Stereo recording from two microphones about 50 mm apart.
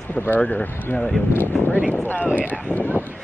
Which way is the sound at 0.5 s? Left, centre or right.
Left.